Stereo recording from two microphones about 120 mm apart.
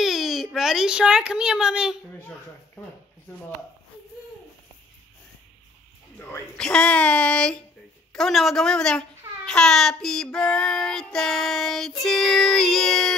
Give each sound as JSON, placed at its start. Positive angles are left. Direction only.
{"t": 0.0, "sound": "a sound", "side_deg": -5}
{"t": 0.6, "sound": "a woman's voice", "side_deg": -5}
{"t": 6.1, "sound": "a child's voice", "side_deg": 15}
{"t": 8.1, "sound": "child singing", "side_deg": 5}